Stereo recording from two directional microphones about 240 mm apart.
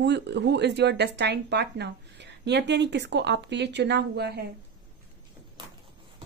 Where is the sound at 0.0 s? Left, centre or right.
Right.